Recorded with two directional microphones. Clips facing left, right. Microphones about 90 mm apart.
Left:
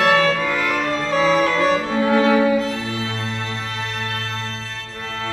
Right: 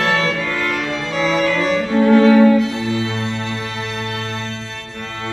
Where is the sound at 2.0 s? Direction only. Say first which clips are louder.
Right 6 dB; 10° left (ahead or behind).